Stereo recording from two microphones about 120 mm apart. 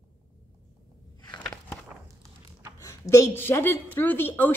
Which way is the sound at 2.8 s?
25° left (ahead or behind).